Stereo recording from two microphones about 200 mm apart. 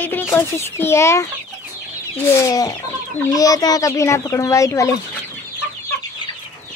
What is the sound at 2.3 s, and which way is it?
Speech, 15° left (ahead or behind).